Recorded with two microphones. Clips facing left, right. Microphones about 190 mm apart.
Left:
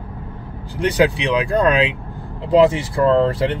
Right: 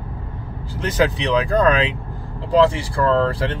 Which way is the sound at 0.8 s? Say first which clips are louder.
Left 3 dB; 10° left (ahead or behind).